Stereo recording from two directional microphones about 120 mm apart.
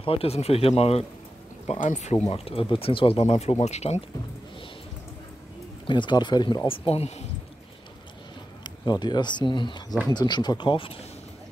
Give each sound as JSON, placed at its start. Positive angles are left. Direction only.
{"t": 0.0, "sound": "speech", "side_deg": 50}
{"t": 1.7, "sound": "speech", "side_deg": 85}
{"t": 2.2, "sound": "speech", "side_deg": 55}
{"t": 5.9, "sound": "speech", "side_deg": 40}
{"t": 8.6, "sound": "speech", "side_deg": 35}